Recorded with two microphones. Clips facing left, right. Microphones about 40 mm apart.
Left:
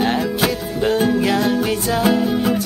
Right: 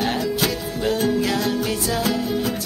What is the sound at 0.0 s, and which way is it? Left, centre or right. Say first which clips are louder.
Music: left 4 dB; left.